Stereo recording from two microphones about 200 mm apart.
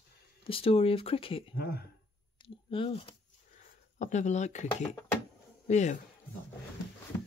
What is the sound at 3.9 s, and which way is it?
Speech, 35° left (ahead or behind).